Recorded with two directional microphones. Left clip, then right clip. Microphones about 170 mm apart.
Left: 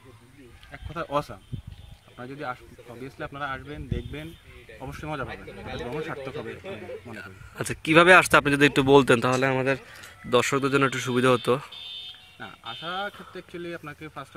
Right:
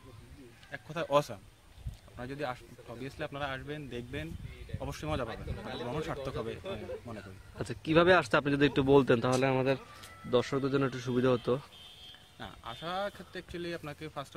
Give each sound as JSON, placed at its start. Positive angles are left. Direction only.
{"t": 0.7, "sound": "a man's voice", "side_deg": -25}
{"t": 7.2, "sound": "speech", "side_deg": 15}
{"t": 12.4, "sound": "a man's voice", "side_deg": -25}